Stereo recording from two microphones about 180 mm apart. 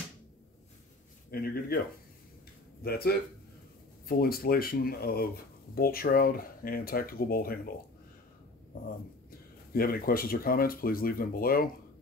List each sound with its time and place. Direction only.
1.3 s speech: 55° left (ahead or behind)
2.8 s speech: 60° left (ahead or behind)
9.7 s speech: 55° left (ahead or behind)